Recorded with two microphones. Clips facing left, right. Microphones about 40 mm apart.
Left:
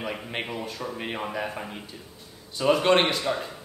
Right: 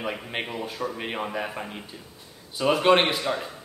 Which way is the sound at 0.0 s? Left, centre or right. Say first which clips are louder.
Right 1 dB; centre.